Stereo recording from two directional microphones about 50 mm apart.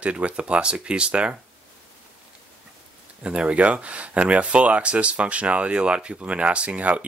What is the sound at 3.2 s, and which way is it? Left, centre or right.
Speech, right.